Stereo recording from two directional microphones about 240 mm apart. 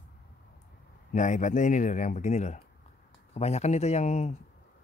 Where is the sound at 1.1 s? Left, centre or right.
Left.